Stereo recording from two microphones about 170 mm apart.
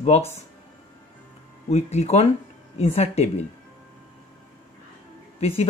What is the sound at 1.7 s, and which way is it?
Speech, 40° left (ahead or behind).